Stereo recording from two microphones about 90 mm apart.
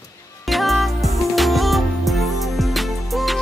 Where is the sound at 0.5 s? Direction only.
Centre (ahead or behind).